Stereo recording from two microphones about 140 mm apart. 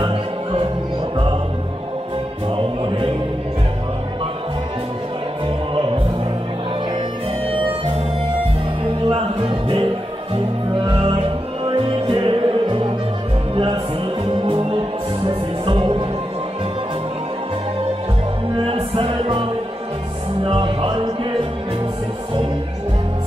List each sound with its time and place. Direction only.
0.0 s music: 40° right (ahead or behind)
2.5 s music: 40° right (ahead or behind)
8.8 s music: 40° right (ahead or behind)
14.2 s music: 40° right (ahead or behind)
18.6 s music: 40° right (ahead or behind)
20.4 s music: 35° right (ahead or behind)